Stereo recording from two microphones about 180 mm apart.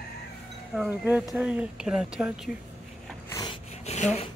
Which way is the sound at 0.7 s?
5° right (ahead or behind).